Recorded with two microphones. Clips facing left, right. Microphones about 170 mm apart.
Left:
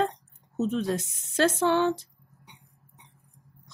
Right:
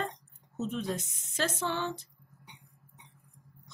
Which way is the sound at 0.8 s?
90° left.